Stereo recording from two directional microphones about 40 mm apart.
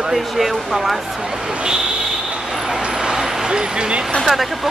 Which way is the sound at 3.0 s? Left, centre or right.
Centre.